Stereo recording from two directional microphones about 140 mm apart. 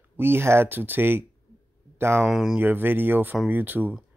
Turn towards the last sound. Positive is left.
turn(degrees=-15)  # may be behind; listen again after turning